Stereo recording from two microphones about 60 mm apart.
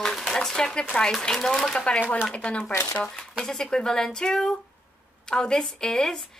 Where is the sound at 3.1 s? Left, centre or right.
Centre.